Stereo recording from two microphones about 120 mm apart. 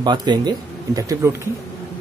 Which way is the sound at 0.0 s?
35° right (ahead or behind).